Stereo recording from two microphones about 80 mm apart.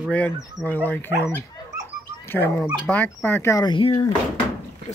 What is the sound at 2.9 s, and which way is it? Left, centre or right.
Speech, left.